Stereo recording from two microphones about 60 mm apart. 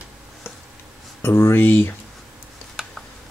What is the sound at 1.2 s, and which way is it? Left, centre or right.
Speech, left.